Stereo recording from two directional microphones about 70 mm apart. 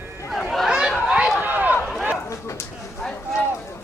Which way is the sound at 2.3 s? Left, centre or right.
Left.